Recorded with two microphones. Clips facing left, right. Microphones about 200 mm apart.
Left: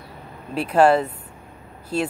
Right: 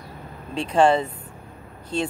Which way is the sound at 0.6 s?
5° left (ahead or behind).